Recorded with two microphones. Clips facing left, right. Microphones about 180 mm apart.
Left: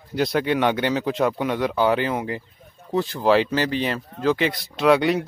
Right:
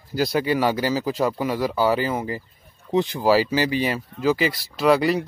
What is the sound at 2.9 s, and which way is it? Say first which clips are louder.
Speech: even; 15° right (ahead or behind).